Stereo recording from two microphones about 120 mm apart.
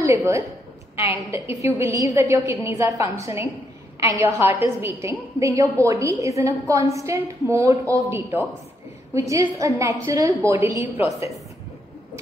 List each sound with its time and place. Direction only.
0.0 s a woman's voice: 25° right (ahead or behind)